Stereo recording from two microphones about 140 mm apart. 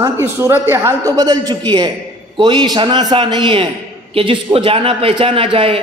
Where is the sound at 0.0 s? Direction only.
20° right (ahead or behind).